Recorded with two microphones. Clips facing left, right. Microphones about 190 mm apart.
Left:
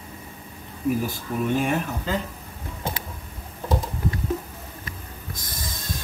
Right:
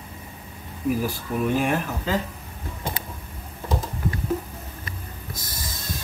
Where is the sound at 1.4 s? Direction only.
Centre (ahead or behind).